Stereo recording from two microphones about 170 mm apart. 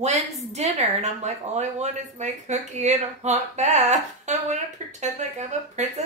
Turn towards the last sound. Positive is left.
turn(degrees=-40)  # may be behind; listen again after turning